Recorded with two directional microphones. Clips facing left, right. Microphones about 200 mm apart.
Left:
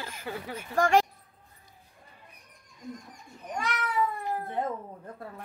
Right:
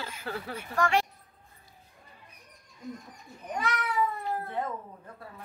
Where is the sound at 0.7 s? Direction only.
45° left (ahead or behind).